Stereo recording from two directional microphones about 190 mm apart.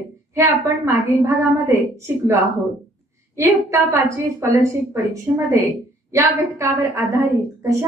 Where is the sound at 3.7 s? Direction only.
15° right (ahead or behind).